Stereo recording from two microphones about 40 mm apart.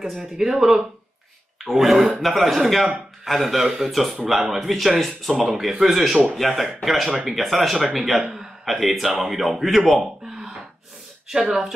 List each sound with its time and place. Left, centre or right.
0.1 s speech: centre
8.2 s a man's voice: centre
8.6 s speech: centre
10.3 s gasp: centre
11.2 s speech: centre